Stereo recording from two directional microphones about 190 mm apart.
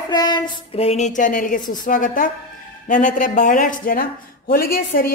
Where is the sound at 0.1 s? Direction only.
20° left (ahead or behind).